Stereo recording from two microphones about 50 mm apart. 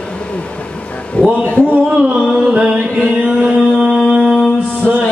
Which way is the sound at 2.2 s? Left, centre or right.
Centre.